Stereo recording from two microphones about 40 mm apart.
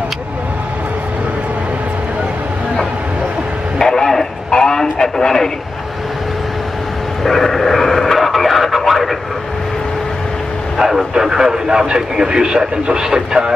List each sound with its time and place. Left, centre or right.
3.7 s radio: centre
7.2 s radio: centre
10.8 s speech: centre